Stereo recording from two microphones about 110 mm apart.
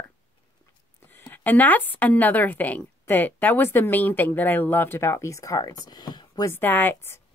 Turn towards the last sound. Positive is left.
turn(degrees=20)  # may be behind; listen again after turning